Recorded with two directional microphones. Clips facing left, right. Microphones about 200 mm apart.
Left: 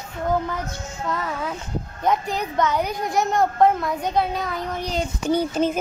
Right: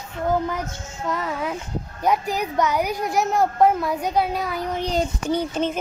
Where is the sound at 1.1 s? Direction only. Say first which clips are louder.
Right 2 dB; 15° right (ahead or behind).